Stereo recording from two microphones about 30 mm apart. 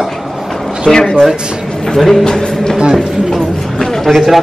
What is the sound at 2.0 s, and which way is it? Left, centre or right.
Speech, centre.